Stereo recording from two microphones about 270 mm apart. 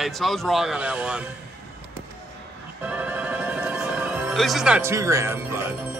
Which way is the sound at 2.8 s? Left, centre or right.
Centre.